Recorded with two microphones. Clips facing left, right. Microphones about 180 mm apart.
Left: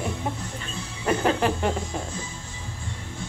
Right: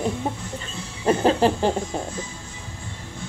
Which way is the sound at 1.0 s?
30° right (ahead or behind).